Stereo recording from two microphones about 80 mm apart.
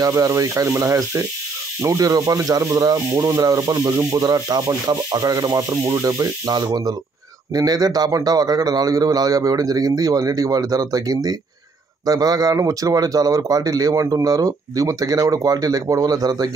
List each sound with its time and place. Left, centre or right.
0.0 s speech: right
5.9 s speech: right